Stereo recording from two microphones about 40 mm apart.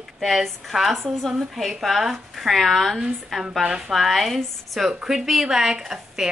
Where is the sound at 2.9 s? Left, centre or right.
Centre.